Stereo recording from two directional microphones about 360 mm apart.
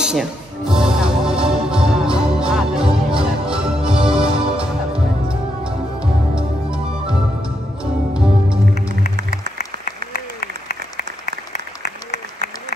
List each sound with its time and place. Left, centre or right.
0.0 s music: centre
9.6 s applause: left